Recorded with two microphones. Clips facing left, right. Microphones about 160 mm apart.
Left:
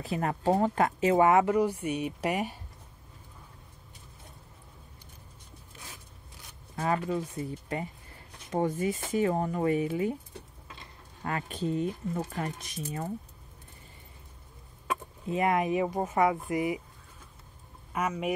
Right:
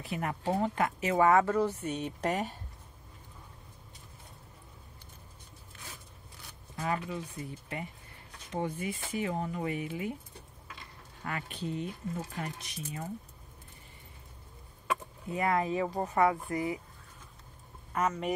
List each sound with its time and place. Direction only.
0.0 s speech: 35° left (ahead or behind); by 2.6 s 10° left (ahead or behind)
6.8 s speech: 40° left (ahead or behind)
7.4 s speech: 30° left (ahead or behind)
8.5 s speech: 45° left (ahead or behind)
11.2 s speech: 35° left (ahead or behind)
15.2 s speech: 20° left (ahead or behind)
17.9 s speech: 10° left (ahead or behind)